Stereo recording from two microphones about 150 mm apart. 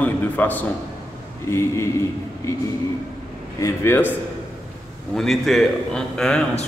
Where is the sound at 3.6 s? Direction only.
15° left (ahead or behind).